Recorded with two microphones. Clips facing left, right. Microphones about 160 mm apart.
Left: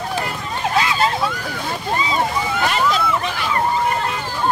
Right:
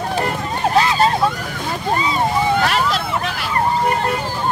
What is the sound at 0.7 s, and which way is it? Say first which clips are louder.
Vehicle: right 4 dB; 35° right (ahead or behind).